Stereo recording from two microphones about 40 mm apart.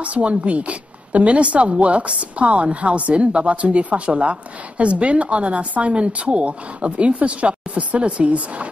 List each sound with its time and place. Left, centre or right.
0.0 s a woman's voice: right